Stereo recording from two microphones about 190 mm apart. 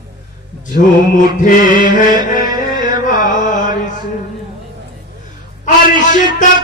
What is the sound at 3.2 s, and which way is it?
Chant, 45° left (ahead or behind).